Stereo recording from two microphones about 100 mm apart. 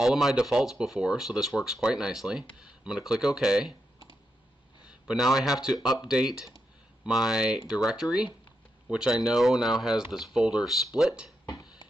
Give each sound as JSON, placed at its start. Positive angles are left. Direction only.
{"t": 0.0, "sound": "speech", "side_deg": -5}
{"t": 4.8, "sound": "speech", "side_deg": -5}
{"t": 11.4, "sound": "a sound", "side_deg": 45}